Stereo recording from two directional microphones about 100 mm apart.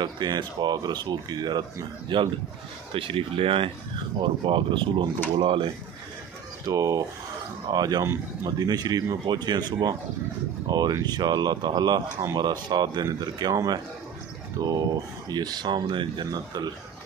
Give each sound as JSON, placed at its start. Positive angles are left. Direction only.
{"t": 0.0, "sound": "speech", "side_deg": -50}
{"t": 6.6, "sound": "speech", "side_deg": -35}
{"t": 14.6, "sound": "speech", "side_deg": -40}